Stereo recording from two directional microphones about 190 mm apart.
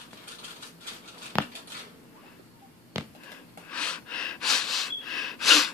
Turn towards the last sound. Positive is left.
turn(degrees=0)  # may be behind; listen again after turning